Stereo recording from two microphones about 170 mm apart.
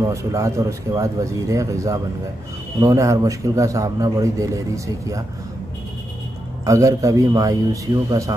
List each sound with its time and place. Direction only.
0.0 s a man's voice: 20° right (ahead or behind)
6.6 s a man's voice: 20° right (ahead or behind)